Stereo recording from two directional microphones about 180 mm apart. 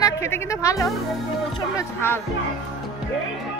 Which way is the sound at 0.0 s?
15° left (ahead or behind).